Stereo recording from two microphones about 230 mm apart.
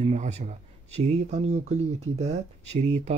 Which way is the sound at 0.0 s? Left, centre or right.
Right.